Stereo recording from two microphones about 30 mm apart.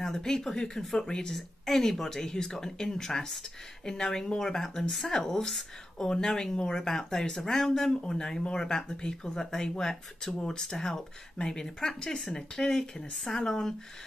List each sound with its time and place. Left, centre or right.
0.0 s speech: centre
1.3 s speech: centre
7.9 s speech: left
11.3 s speech: left